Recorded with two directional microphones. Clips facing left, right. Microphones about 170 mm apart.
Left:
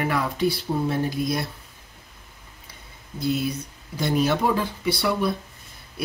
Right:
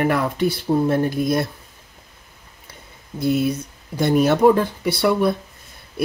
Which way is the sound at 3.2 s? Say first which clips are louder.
Right 5 dB; 55° right (ahead or behind).